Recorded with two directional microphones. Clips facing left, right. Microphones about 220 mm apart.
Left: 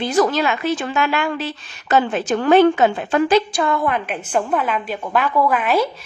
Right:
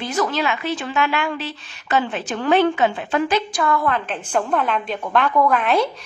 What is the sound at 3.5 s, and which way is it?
A woman's voice, 25° left (ahead or behind).